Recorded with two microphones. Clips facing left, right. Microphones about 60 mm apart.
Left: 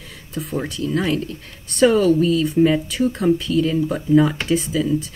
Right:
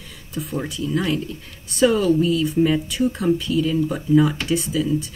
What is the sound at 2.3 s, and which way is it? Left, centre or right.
Speech, centre.